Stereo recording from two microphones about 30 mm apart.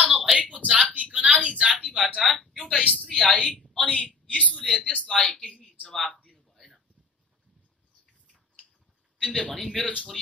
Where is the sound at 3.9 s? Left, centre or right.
Left.